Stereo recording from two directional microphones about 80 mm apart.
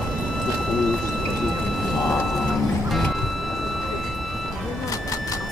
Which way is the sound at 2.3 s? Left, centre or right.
Centre.